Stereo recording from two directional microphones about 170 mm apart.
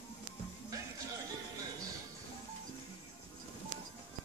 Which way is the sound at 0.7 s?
20° right (ahead or behind).